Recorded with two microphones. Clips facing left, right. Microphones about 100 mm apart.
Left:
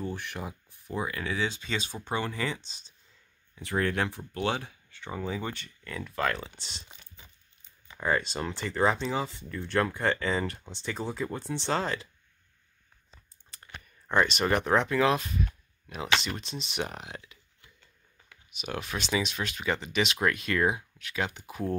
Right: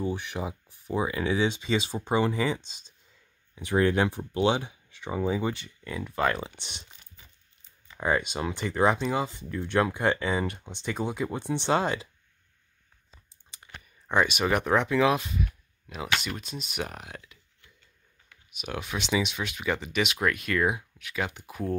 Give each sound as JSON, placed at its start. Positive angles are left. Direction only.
{"t": 0.0, "sound": "speech", "side_deg": -15}
{"t": 8.0, "sound": "speech", "side_deg": -10}
{"t": 13.6, "sound": "speech", "side_deg": -5}